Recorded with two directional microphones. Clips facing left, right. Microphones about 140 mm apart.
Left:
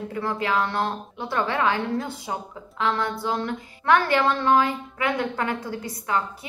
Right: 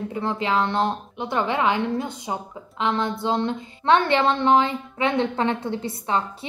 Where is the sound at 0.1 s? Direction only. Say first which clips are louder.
Right 1 dB; 20° right (ahead or behind).